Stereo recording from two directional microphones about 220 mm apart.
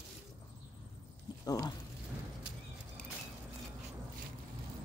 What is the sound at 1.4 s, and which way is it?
Speech, 15° left (ahead or behind).